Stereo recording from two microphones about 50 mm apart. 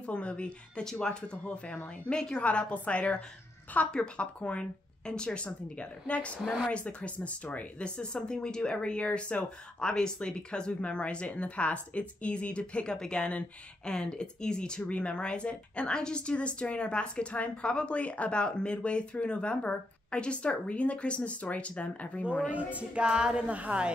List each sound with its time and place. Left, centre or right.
0.0 s speech: left
22.5 s speech: right
23.0 s speech: centre